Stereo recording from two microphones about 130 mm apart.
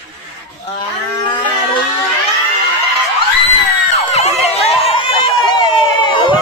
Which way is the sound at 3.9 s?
55° left (ahead or behind).